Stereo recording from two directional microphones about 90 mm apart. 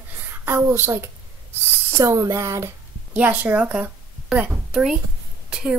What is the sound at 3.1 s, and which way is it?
A woman's voice, 15° right (ahead or behind).